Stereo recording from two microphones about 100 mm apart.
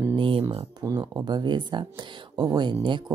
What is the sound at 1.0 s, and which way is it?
Speech, 45° right (ahead or behind).